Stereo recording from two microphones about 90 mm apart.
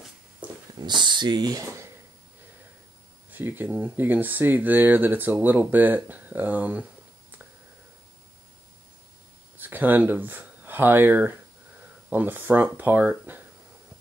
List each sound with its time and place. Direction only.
0.4 s dog: 15° right (ahead or behind)
0.8 s speech: 60° right (ahead or behind)
3.3 s speech: 20° right (ahead or behind)
9.6 s speech: 20° right (ahead or behind)